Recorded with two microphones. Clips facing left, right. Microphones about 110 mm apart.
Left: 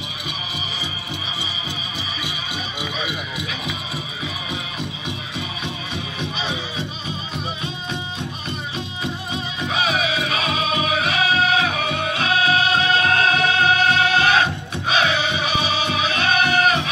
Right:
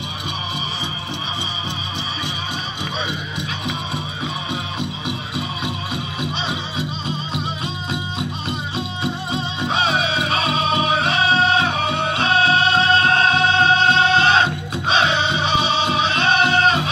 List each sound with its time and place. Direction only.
9.0 s music: 30° right (ahead or behind)